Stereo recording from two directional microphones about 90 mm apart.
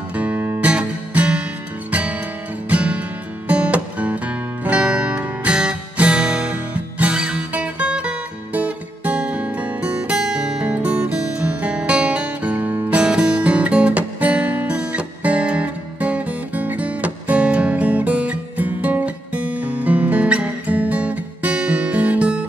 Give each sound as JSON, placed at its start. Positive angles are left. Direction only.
{"t": 0.1, "sound": "music", "side_deg": -15}